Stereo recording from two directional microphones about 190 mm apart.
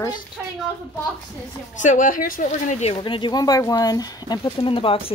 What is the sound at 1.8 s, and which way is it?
A woman's voice, 40° left (ahead or behind).